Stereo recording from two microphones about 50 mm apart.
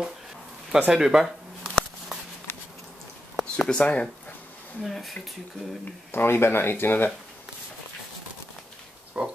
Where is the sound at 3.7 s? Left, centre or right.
Left.